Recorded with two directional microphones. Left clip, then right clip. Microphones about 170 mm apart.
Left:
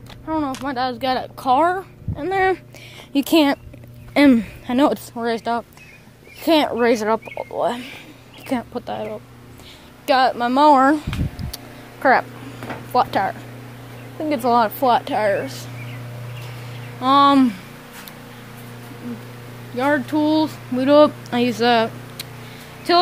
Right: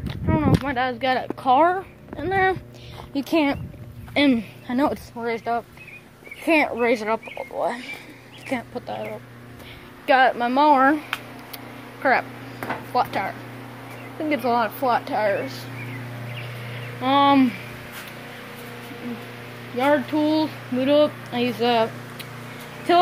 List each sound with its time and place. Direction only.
0.3 s speech: 20° left (ahead or behind)
2.1 s speech: 55° left (ahead or behind)
3.1 s speech: 45° left (ahead or behind)
10.0 s speech: 25° left (ahead or behind)
10.5 s speech: 35° left (ahead or behind)
11.5 s a sound: 35° left (ahead or behind)
12.9 s speech: 50° left (ahead or behind)
14.4 s speech: 45° left (ahead or behind)
17.0 s speech: 25° left (ahead or behind)
19.8 s speech: 25° left (ahead or behind)
21.0 s speech: 40° left (ahead or behind)
22.9 s speech: 20° left (ahead or behind)